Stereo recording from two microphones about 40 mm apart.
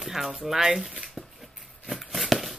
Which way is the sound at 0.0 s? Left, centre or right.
Centre.